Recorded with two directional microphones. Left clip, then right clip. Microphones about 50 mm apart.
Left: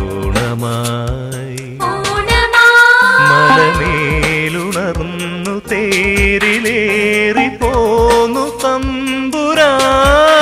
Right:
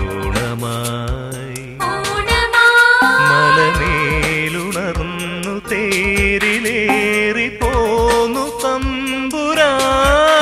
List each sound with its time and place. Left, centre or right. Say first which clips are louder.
1.9 s music: left 3 dB; right